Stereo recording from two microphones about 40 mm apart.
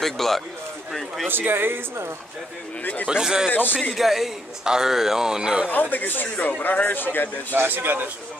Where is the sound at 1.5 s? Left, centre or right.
Right.